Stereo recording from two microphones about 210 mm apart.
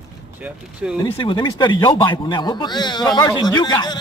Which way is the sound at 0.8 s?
5° right (ahead or behind).